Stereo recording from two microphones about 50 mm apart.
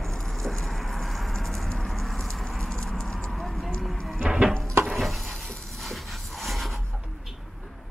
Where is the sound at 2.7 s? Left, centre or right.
Centre.